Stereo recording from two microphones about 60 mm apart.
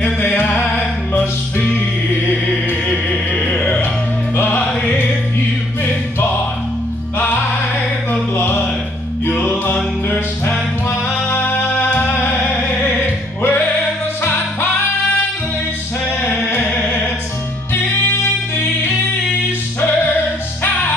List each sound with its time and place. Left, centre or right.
0.0 s music: left
2.9 s music: left
3.5 s music: centre
4.6 s music: left
8.1 s music: left
11.1 s music: left